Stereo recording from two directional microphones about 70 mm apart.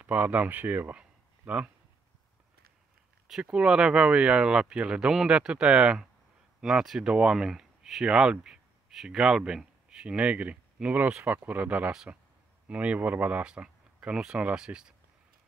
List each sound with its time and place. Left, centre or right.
0.0 s speech: right
3.4 s speech: centre